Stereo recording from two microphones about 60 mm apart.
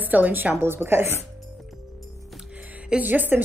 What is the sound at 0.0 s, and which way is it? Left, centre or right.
A woman's voice, right.